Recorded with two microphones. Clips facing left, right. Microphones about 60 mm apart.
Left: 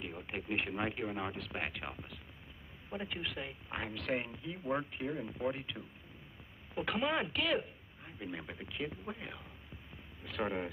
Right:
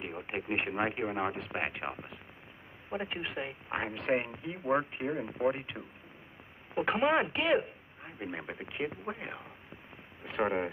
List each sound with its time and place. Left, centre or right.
0.0 s speech: right